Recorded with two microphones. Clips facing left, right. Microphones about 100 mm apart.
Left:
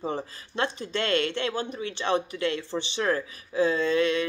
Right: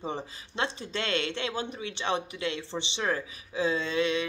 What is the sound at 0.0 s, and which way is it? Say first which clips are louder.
Speech: left 4 dB; 20° right (ahead or behind).